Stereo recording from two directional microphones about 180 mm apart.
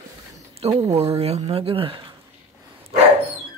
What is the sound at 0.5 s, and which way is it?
Speech, 35° right (ahead or behind).